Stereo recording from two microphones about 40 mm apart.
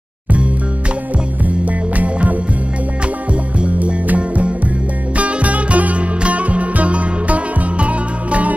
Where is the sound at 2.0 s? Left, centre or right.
Right.